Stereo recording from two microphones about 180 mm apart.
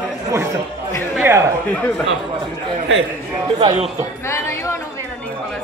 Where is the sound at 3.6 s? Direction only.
25° right (ahead or behind).